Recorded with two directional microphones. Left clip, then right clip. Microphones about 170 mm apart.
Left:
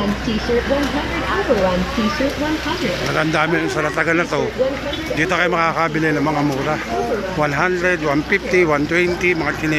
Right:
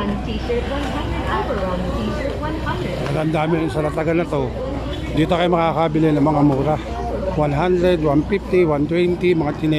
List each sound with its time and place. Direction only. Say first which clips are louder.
3.2 s speech: left 2 dB; 15° right (ahead or behind)
7.4 s speech: even; 15° right (ahead or behind)